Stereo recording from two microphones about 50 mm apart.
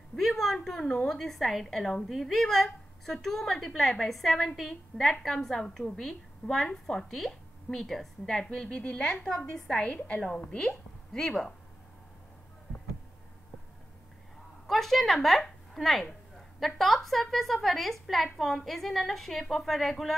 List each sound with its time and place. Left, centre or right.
0.1 s a sound: centre
1.0 s a woman's voice: centre; by 9.2 s left
9.2 s a woman's voice: centre
9.9 s a woman's voice: left
11.1 s a woman's voice: centre
14.7 s a woman's voice: centre